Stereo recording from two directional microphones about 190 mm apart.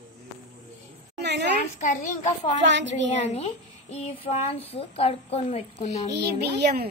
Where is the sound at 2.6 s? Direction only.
70° right (ahead or behind).